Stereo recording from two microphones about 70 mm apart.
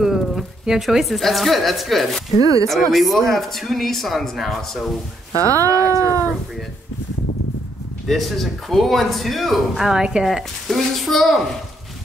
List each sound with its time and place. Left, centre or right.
0.0 s speech: centre
2.4 s speech: right
2.7 s a man's voice: centre
5.4 s speech: right
8.1 s a man's voice: centre